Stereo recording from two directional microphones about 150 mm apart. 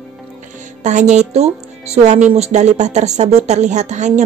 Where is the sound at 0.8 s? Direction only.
50° right (ahead or behind).